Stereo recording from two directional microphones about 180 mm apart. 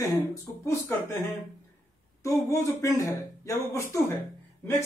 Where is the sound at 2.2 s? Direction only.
20° left (ahead or behind).